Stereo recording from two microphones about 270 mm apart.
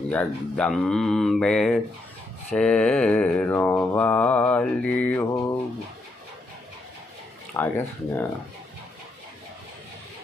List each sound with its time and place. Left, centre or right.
0.1 s mantra: centre
7.5 s speech: centre